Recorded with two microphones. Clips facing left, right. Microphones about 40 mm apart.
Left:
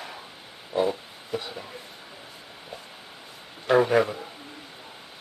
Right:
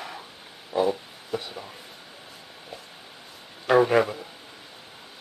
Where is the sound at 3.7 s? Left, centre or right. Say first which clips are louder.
Right 1 dB; centre.